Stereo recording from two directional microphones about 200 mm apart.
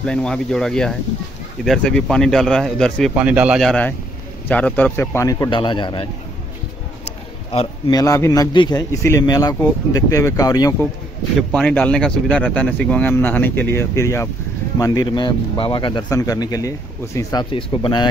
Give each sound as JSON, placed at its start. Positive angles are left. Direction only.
{"t": 0.0, "sound": "a man's voice", "side_deg": 5}
{"t": 7.5, "sound": "a man's voice", "side_deg": 15}
{"t": 11.5, "sound": "a man's voice", "side_deg": 5}